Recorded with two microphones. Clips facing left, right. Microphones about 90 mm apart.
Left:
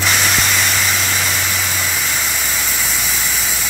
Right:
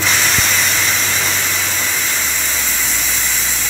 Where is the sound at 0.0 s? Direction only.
5° left (ahead or behind).